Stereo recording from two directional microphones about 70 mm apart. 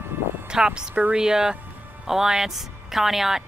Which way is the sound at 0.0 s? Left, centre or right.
Right.